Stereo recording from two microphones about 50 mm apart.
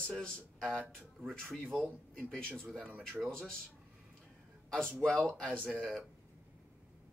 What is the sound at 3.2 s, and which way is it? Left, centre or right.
Speech, centre.